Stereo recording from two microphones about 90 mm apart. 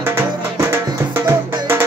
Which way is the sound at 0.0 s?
30° right (ahead or behind).